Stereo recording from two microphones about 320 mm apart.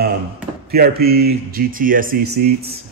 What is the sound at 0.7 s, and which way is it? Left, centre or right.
Speech, right.